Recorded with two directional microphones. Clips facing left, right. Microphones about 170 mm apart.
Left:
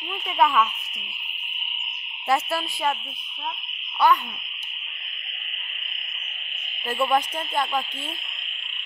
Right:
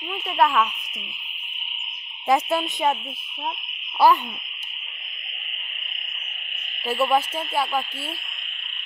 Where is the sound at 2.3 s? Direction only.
20° right (ahead or behind).